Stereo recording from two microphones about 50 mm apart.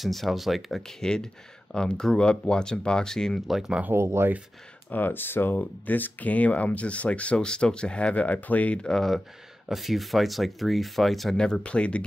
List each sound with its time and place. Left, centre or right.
0.0 s speech: centre
1.0 s speech: centre
3.3 s speech: centre
3.9 s speech: right
4.8 s speech: left
8.8 s speech: centre
9.7 s speech: centre
11.6 s speech: left